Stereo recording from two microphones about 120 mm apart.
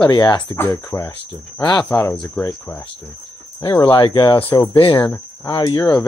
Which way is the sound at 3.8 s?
45° left (ahead or behind).